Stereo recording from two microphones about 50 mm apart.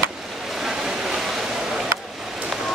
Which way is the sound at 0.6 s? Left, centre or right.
Centre.